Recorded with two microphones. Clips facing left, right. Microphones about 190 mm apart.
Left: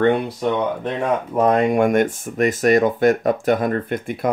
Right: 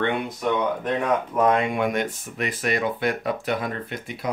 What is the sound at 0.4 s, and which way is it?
Speech, 30° left (ahead or behind).